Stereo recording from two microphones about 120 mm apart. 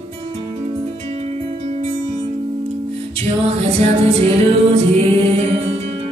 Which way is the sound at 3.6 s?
60° right (ahead or behind).